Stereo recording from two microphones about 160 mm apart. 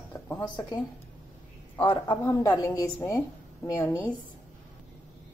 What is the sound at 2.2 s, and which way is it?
A woman's voice, 20° left (ahead or behind).